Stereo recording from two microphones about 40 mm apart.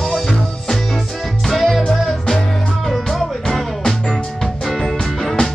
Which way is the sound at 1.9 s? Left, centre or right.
Centre.